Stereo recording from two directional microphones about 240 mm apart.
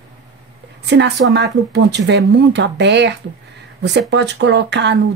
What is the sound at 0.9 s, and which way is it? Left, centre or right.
Speech, right.